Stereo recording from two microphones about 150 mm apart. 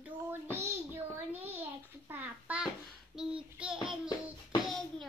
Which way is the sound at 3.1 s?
5° right (ahead or behind).